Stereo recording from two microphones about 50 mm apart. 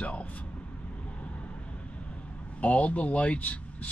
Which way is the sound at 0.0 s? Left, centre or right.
Left.